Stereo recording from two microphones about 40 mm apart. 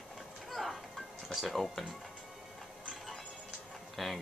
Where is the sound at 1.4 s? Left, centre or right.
Centre.